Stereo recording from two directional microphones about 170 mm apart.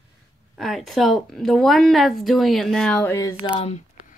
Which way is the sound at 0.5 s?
Centre (ahead or behind).